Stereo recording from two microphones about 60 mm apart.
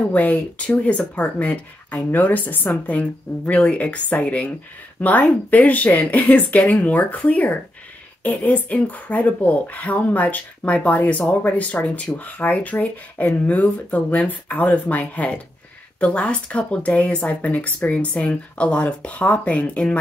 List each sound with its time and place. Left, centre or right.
0.0 s speech: left